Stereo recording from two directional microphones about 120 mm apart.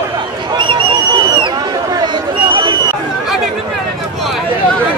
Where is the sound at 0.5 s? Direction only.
40° right (ahead or behind).